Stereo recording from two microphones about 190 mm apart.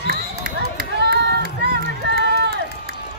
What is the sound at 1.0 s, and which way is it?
Run, 60° right (ahead or behind).